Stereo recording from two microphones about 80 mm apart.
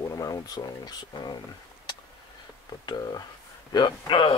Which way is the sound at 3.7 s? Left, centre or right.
Left.